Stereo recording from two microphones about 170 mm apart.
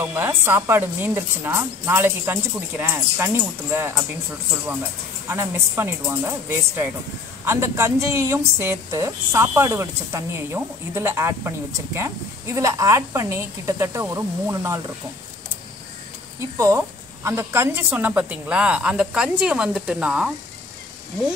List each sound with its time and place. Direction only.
0.1 s a woman's voice: 15° right (ahead or behind)
5.3 s a woman's voice: 15° right (ahead or behind)
16.3 s a woman's voice: 15° right (ahead or behind)